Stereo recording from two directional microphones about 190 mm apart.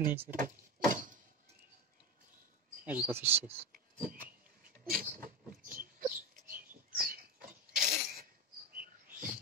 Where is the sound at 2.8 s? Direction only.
10° right (ahead or behind).